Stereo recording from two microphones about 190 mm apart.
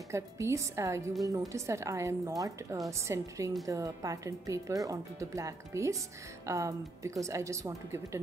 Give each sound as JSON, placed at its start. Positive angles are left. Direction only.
{"t": 0.1, "sound": "speech", "side_deg": -15}